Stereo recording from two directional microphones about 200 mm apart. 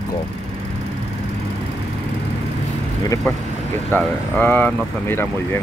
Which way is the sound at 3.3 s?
10° left (ahead or behind).